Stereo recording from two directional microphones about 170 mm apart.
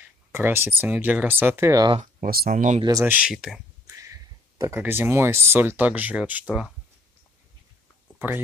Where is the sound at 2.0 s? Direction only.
55° right (ahead or behind).